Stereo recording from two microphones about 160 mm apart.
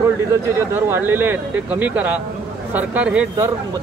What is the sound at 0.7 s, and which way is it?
Speech, 15° right (ahead or behind).